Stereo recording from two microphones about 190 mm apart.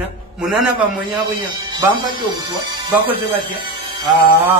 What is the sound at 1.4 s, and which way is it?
Speech, 20° right (ahead or behind).